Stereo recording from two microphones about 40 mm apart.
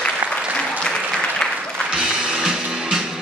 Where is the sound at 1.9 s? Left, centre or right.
Centre.